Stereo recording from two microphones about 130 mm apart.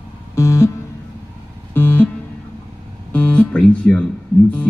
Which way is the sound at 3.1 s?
10° left (ahead or behind).